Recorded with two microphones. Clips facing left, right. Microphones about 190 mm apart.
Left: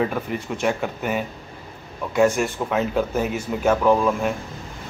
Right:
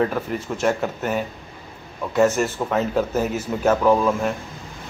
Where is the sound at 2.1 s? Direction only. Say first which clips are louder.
Even; 10° left (ahead or behind).